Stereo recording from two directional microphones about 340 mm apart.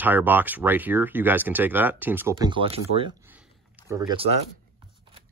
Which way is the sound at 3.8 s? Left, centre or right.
Centre.